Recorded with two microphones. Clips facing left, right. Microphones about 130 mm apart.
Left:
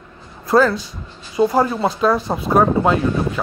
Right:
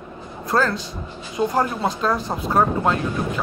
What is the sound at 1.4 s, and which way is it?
Speech, 30° left (ahead or behind).